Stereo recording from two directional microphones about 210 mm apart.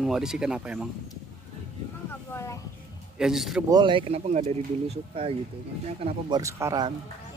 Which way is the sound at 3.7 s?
25° right (ahead or behind).